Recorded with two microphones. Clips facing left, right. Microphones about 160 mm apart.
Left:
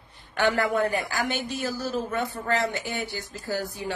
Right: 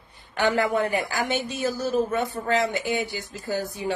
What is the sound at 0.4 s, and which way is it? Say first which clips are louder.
A woman's voice: right 1 dB; 15° right (ahead or behind).